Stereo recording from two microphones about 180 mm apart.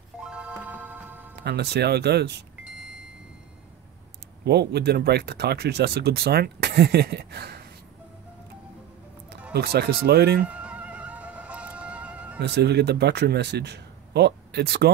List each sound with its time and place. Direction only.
0.2 s music: 5° right (ahead or behind)
1.3 s speech: 70° right (ahead or behind)
4.5 s speech: 65° right (ahead or behind)
9.5 s speech: 60° right (ahead or behind)
10.4 s music: 5° right (ahead or behind)
12.4 s speech: 65° right (ahead or behind)